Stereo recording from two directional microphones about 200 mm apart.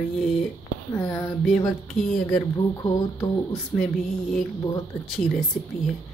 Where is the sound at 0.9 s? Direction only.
15° left (ahead or behind).